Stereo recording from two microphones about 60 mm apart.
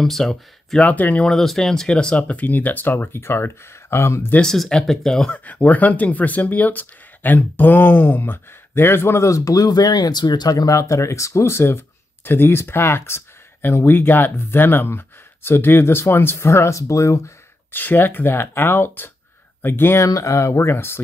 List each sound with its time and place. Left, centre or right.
0.0 s speech: centre
0.7 s speech: left
1.2 s speech: centre; by 4.3 s left
4.6 s speech: centre
5.4 s speech: left
9.3 s speech: left
17.6 s speech: left
20.0 s speech: left